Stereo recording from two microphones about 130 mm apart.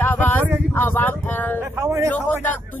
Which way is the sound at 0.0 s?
15° left (ahead or behind).